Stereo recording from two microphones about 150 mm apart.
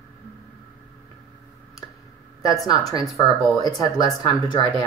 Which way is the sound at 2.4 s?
25° left (ahead or behind).